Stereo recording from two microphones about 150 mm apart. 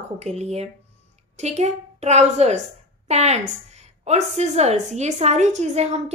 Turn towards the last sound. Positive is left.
turn(degrees=-50)  # may be behind; listen again after turning